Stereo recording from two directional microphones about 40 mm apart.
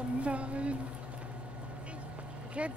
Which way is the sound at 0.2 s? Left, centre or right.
Right.